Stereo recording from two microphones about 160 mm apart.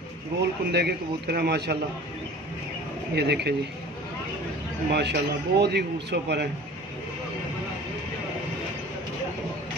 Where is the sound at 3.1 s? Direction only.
90° right.